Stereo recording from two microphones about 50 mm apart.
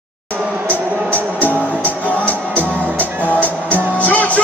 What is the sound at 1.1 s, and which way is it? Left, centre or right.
Music, left.